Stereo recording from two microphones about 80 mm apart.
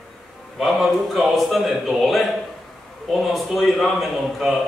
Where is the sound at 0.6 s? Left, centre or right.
Centre.